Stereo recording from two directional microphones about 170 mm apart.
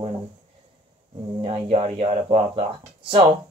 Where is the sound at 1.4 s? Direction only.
35° right (ahead or behind).